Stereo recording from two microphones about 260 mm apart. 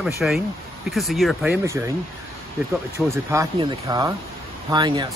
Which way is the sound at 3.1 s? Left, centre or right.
Centre.